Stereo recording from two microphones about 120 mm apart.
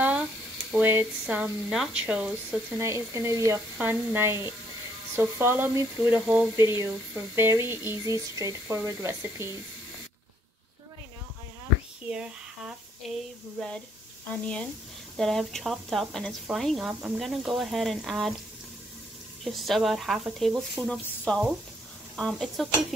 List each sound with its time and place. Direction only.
0.7 s speech: 15° right (ahead or behind)
2.8 s speech: 25° right (ahead or behind)
6.5 s speech: 25° right (ahead or behind)
12.1 s speech: 5° right (ahead or behind)
14.3 s speech: 10° left (ahead or behind)
19.4 s speech: centre (ahead or behind)